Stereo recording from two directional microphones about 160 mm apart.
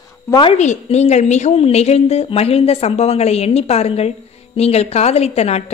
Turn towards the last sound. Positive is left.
turn(degrees=40)  # may be behind; listen again after turning